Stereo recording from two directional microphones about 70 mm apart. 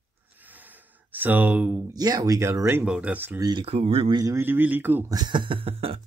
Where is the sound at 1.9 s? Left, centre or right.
Right.